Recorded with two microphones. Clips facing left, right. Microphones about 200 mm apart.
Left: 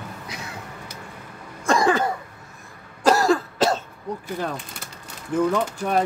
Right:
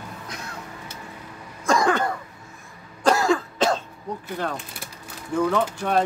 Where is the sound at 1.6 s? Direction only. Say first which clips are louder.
Left 1 dB; centre (ahead or behind).